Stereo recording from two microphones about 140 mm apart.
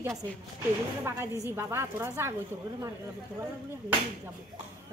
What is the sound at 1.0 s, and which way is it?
Speech, 20° right (ahead or behind).